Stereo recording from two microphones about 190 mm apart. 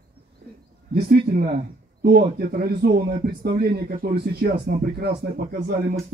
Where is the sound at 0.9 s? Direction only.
55° right (ahead or behind).